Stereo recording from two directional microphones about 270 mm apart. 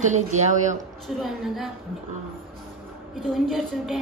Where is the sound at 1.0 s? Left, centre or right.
Centre.